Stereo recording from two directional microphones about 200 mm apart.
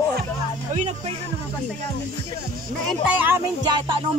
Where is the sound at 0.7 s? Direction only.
35° right (ahead or behind).